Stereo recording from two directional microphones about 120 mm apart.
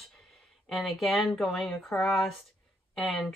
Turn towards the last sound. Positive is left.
turn(degrees=5)  # may be behind; listen again after turning